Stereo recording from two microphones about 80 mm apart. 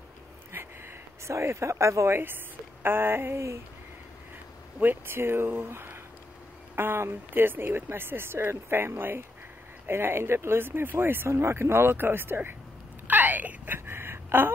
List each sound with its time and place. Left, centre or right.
0.5 s speech: right
4.7 s speech: right
13.0 s a sound: right